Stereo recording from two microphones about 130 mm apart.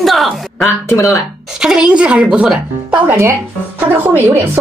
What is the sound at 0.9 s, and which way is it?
Speech, 25° left (ahead or behind).